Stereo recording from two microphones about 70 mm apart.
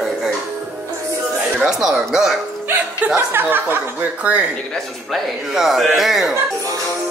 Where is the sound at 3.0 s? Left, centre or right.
Right.